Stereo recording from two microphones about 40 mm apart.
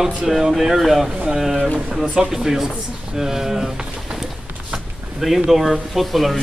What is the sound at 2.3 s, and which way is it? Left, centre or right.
Speech, centre.